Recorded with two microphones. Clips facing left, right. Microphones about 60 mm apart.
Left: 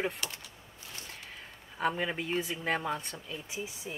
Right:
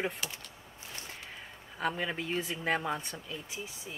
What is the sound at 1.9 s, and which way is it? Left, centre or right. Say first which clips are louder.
Speech: even; centre.